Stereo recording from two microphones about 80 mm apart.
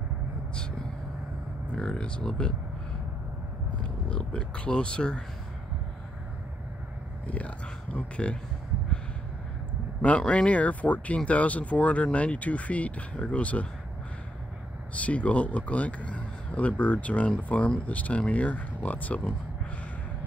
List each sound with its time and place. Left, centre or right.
1.8 s speech: centre
3.7 s a sound: centre
7.2 s speech: centre
10.0 s speech: centre
15.0 s speech: centre